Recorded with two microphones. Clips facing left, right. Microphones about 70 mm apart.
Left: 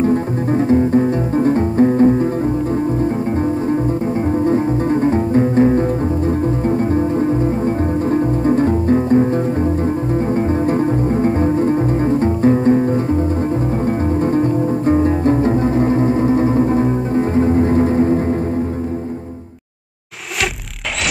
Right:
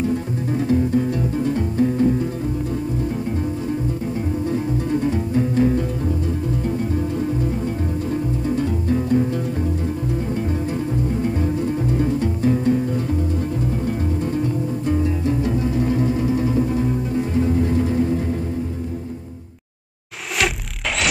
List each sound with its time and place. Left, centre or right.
0.0 s music: left
4.5 s music: left